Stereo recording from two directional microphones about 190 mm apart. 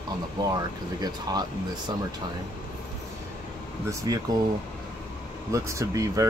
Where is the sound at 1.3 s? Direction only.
20° right (ahead or behind).